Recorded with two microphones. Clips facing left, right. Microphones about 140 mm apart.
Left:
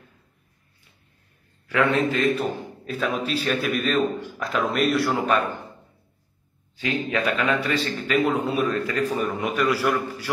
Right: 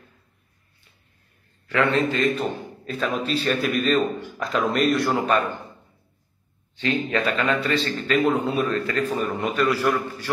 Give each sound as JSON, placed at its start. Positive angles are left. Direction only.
{"t": 1.7, "sound": "a man's voice", "side_deg": 10}
{"t": 6.8, "sound": "a man's voice", "side_deg": 10}